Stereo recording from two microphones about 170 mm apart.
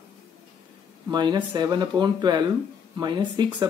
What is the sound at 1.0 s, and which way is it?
Speech, 25° right (ahead or behind).